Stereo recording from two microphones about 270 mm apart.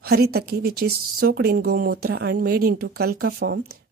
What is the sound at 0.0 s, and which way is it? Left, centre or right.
Speech, right.